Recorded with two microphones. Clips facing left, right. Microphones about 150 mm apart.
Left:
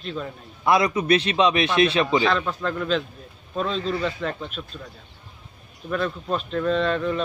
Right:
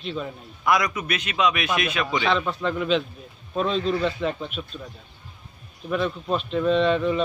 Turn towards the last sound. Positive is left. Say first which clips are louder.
# right 2 dB
turn(degrees=-5)  # may be behind; listen again after turning